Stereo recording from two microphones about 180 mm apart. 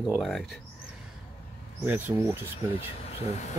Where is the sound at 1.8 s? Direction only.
10° right (ahead or behind).